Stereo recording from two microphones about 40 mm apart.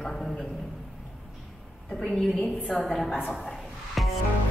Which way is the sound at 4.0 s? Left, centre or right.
Centre.